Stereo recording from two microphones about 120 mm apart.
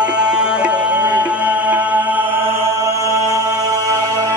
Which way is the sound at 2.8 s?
25° right (ahead or behind).